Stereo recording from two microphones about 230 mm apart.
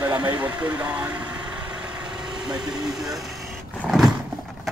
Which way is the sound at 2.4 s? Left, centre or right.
Centre.